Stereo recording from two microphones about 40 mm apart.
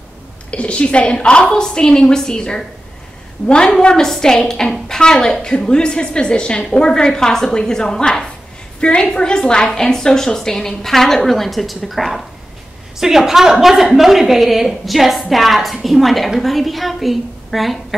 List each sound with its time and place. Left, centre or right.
0.5 s a woman's voice: left
3.8 s a woman's voice: centre